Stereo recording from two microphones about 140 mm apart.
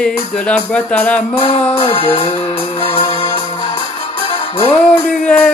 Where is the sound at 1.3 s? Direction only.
40° left (ahead or behind).